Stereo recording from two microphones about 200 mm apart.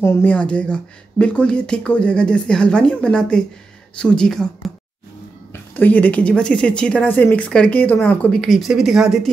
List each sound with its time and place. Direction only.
0.0 s speech: 10° left (ahead or behind)
5.5 s speech: 10° left (ahead or behind)